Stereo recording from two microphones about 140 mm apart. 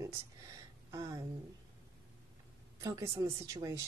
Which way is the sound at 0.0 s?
25° right (ahead or behind).